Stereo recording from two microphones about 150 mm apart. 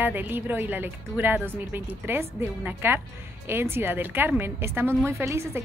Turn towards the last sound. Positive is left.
turn(degrees=-20)  # may be behind; listen again after turning